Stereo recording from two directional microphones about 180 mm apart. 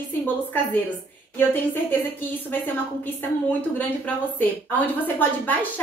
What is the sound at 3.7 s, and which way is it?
A woman's voice, 10° left (ahead or behind).